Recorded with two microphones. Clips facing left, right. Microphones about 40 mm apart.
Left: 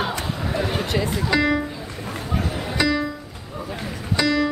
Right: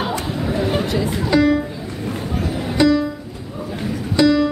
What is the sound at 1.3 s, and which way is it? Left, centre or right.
Speech, centre.